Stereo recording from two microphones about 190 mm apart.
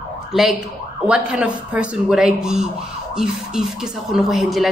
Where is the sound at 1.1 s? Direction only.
5° right (ahead or behind).